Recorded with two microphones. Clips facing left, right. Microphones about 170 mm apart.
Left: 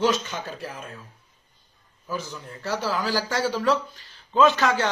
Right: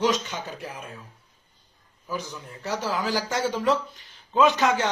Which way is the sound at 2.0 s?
15° right (ahead or behind).